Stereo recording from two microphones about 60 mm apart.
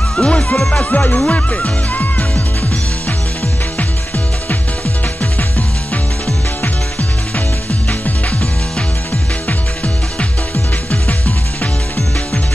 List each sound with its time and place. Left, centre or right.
0.1 s music: centre
0.8 s music: left
6.6 s music: left